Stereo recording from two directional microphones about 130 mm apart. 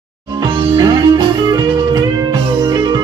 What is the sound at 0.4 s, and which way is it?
Music, 35° right (ahead or behind).